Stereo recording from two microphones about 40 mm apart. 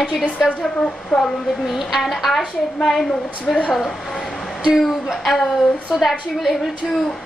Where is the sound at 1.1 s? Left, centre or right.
Left.